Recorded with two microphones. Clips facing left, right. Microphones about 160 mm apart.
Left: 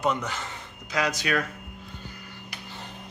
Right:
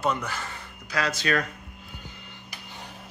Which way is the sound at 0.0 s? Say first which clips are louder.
Left 1 dB; 20° left (ahead or behind).